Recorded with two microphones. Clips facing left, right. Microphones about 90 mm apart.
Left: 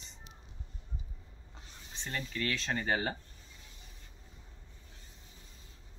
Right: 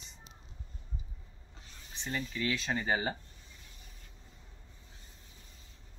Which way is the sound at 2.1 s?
5° right (ahead or behind).